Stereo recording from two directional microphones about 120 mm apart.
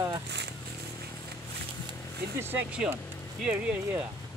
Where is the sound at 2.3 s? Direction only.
15° right (ahead or behind).